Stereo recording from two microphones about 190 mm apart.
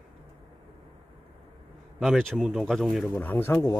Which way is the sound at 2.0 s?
Centre (ahead or behind).